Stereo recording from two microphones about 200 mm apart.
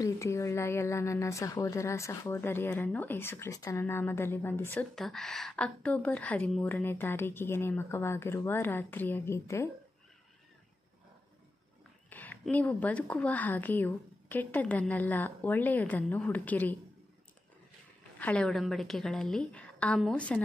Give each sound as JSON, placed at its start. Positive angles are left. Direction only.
{"t": 0.0, "sound": "speech", "side_deg": 15}
{"t": 12.1, "sound": "speech", "side_deg": 10}
{"t": 18.2, "sound": "a woman's voice", "side_deg": 5}